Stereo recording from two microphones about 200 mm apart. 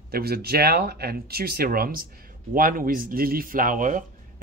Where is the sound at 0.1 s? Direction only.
50° right (ahead or behind).